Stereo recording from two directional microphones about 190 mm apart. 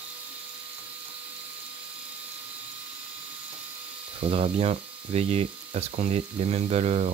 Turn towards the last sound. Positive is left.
turn(degrees=-35)  # may be behind; listen again after turning